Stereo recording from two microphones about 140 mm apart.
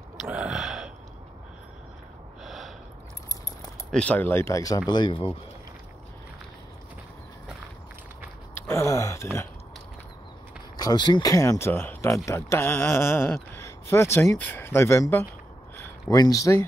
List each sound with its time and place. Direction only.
0.2 s burping: 5° right (ahead or behind)
2.4 s snort: centre (ahead or behind)
3.9 s speech: 10° left (ahead or behind); by 5.4 s 40° left (ahead or behind)
8.5 s a sound: 20° left (ahead or behind)
10.8 s speech: 30° left (ahead or behind)